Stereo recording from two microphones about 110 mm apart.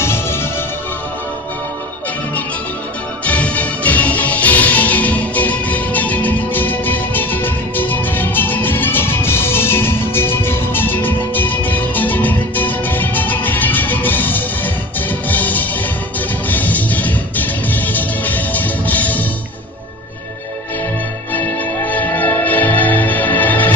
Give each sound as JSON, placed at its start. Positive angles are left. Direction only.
{"t": 0.0, "sound": "music", "side_deg": 20}
{"t": 3.3, "sound": "music", "side_deg": 15}
{"t": 21.3, "sound": "music", "side_deg": 15}